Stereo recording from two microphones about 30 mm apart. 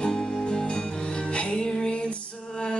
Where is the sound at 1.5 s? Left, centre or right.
Left.